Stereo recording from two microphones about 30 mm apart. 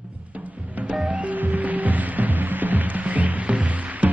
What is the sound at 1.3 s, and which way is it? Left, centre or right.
Music, right.